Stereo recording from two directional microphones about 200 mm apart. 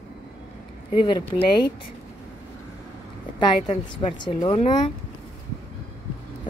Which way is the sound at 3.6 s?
25° left (ahead or behind).